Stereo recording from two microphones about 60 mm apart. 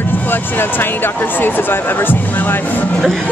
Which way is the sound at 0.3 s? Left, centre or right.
Left.